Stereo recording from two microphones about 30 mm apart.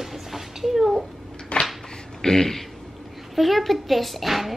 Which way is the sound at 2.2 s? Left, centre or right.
Centre.